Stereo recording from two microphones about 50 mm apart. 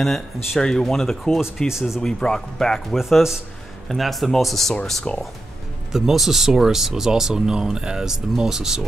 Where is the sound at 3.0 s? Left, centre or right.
Centre.